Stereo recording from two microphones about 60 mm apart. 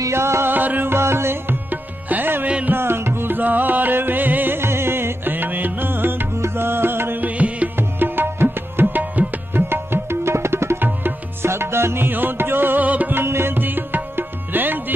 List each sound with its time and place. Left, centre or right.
0.1 s music: right
0.5 s music: right
7.2 s music: right
8.0 s music: right
10.2 s music: right
13.1 s music: right